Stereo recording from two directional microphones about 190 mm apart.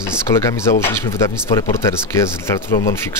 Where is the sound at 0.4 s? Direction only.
15° left (ahead or behind).